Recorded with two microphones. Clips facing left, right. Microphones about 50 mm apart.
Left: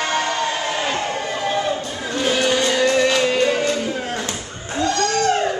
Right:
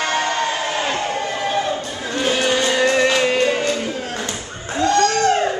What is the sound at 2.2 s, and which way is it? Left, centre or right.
Music, centre.